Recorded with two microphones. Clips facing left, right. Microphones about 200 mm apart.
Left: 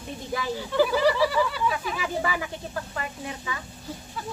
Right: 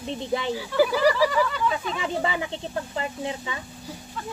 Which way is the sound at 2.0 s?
25° right (ahead or behind).